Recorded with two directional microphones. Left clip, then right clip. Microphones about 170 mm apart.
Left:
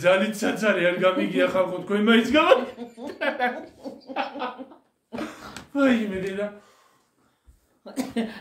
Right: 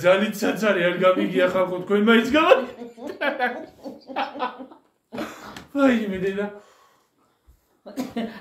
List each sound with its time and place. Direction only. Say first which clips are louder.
0.0 s speech: right 2 dB; 10° right (ahead or behind)
3.1 s a sound: right 1 dB; 10° right (ahead or behind)
5.7 s speech: right 2 dB; 15° right (ahead or behind)
7.8 s speech: left 1 dB; 30° left (ahead or behind)